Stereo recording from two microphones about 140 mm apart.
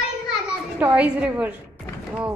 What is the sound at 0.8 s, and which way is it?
Speech, 10° right (ahead or behind).